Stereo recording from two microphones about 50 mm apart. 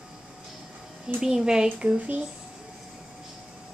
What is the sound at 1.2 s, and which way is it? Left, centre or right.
Speech, centre.